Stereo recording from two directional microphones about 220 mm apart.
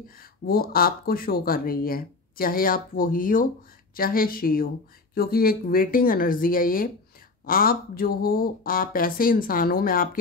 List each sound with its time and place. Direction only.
0.2 s speech: 45° left (ahead or behind)